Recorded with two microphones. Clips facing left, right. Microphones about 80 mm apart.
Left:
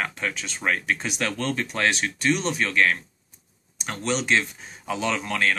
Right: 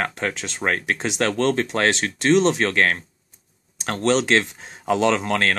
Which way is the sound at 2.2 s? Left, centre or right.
Right.